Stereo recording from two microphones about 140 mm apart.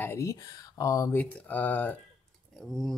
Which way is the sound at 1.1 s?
15° left (ahead or behind).